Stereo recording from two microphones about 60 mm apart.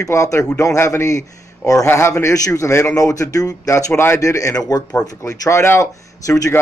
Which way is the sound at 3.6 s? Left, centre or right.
Left.